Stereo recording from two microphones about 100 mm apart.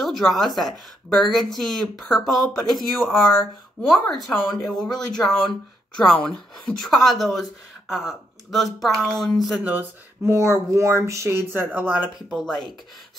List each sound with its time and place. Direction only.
0.0 s speech: centre (ahead or behind)
9.7 s speech: 15° right (ahead or behind)
10.3 s speech: 30° right (ahead or behind)
12.3 s speech: centre (ahead or behind)